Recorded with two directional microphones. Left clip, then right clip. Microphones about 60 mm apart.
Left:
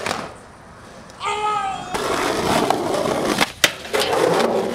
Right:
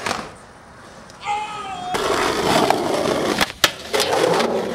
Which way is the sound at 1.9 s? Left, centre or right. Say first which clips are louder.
Right 4 dB; centre.